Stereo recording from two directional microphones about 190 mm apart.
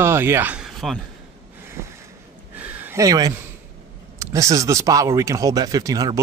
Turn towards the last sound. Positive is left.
turn(degrees=-20)  # may be behind; listen again after turning